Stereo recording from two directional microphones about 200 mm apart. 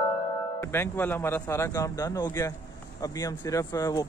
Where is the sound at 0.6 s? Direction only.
10° left (ahead or behind).